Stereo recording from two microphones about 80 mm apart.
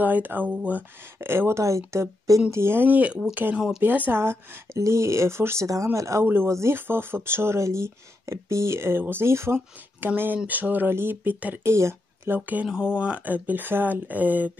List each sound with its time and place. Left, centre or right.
0.0 s speech: right
2.5 s speech: right
3.5 s speech: centre
3.8 s speech: right
11.7 s speech: right
12.6 s speech: centre